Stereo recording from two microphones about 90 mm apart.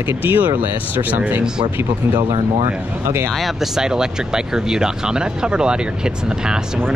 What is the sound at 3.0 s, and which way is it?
Speech, 30° right (ahead or behind).